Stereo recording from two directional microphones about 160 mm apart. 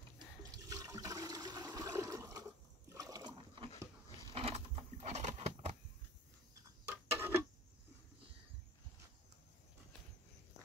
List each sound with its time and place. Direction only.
0.4 s toilet flush: 20° right (ahead or behind)
2.9 s liquid: 20° right (ahead or behind)
4.3 s a sound: 40° right (ahead or behind)
6.9 s clock: 15° right (ahead or behind)